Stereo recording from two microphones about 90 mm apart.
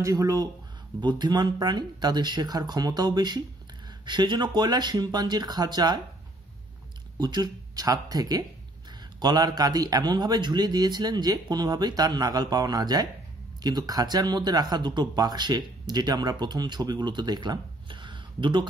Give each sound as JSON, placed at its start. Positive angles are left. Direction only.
{"t": 0.0, "sound": "speech", "side_deg": -40}
{"t": 7.2, "sound": "speech", "side_deg": -55}